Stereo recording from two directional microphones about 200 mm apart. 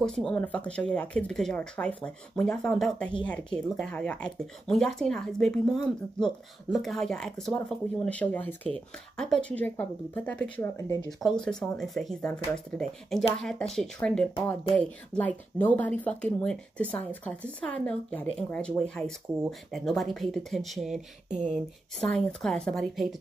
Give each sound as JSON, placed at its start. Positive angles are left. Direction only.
{"t": 0.0, "sound": "a woman's voice", "side_deg": 5}
{"t": 21.3, "sound": "speech", "side_deg": -35}
{"t": 22.0, "sound": "a woman's voice", "side_deg": 0}